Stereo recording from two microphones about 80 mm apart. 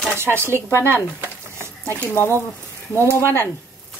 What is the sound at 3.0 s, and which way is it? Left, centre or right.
Speech, left.